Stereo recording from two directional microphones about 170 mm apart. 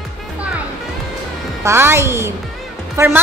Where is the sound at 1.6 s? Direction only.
15° right (ahead or behind).